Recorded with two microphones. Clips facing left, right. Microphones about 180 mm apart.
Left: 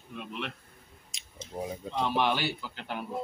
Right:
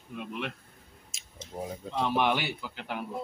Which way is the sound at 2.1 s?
15° right (ahead or behind).